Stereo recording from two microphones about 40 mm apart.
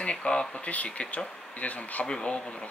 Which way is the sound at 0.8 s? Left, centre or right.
Left.